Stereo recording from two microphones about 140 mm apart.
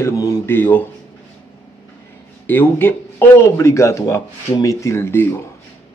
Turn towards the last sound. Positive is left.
turn(degrees=15)  # may be behind; listen again after turning